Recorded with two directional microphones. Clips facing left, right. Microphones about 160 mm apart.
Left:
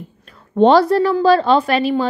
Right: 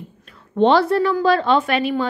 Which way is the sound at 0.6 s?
40° left (ahead or behind).